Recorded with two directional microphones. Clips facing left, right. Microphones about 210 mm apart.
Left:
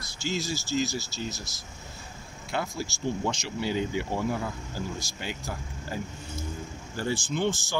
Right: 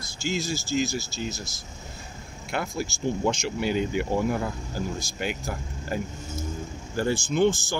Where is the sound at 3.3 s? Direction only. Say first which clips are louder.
Right 4 dB; 50° right (ahead or behind).